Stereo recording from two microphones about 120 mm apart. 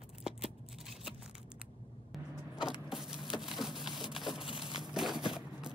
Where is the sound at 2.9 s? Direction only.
5° right (ahead or behind).